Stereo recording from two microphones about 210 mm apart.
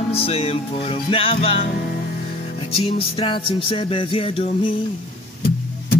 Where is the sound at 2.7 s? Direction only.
25° left (ahead or behind).